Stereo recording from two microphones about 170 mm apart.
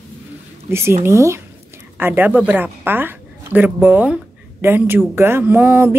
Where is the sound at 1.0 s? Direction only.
15° right (ahead or behind).